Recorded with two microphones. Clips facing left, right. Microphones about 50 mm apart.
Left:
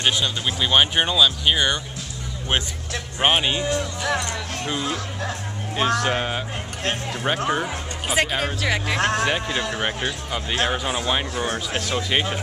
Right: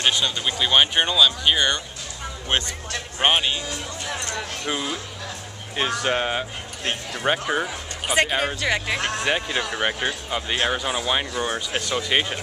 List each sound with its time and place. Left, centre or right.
0.0 s speech: centre
4.4 s speech: centre
4.8 s speech: left
5.8 s speech: centre
11.4 s speech: centre
11.8 s speech: centre